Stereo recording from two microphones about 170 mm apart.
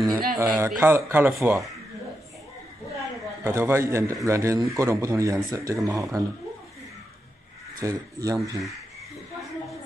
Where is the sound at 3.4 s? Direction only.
15° right (ahead or behind).